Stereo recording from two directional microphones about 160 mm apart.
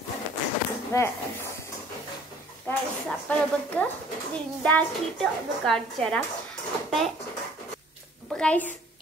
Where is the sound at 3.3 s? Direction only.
10° left (ahead or behind).